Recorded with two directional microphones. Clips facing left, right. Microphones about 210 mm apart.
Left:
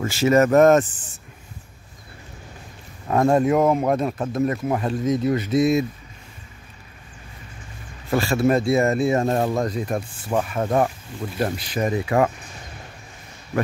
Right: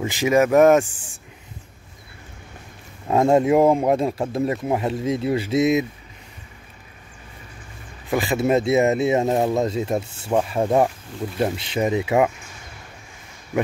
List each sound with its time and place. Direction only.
0.0 s speech: 15° right (ahead or behind)
3.1 s speech: 25° right (ahead or behind)
8.1 s speech: 15° right (ahead or behind)
10.6 s speech: 15° right (ahead or behind)